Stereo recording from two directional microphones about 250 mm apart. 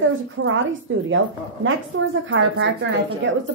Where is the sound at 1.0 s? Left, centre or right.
Right.